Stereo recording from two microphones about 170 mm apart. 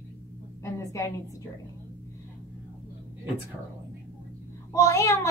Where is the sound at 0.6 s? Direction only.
15° left (ahead or behind).